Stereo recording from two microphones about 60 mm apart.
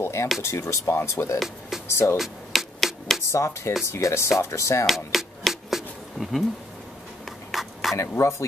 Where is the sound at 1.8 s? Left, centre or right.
Left.